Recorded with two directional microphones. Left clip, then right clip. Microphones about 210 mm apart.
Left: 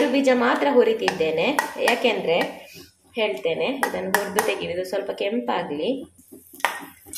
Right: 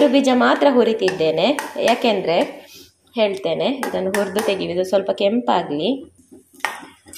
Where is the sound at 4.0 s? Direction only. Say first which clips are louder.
Right 4 dB; 35° right (ahead or behind).